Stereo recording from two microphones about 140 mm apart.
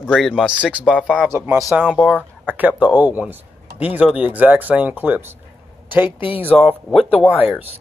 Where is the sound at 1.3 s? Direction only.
20° right (ahead or behind).